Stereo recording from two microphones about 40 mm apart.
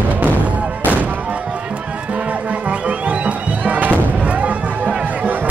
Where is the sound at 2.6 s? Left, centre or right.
Right.